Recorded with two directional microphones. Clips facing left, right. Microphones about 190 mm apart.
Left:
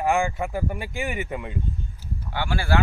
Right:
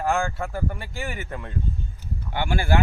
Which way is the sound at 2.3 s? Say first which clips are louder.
Right 1 dB; 20° right (ahead or behind).